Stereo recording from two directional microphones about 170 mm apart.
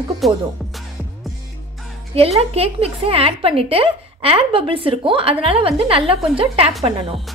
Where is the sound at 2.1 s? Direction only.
35° right (ahead or behind).